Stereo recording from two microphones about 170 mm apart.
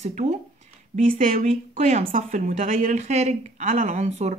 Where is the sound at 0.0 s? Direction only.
40° right (ahead or behind).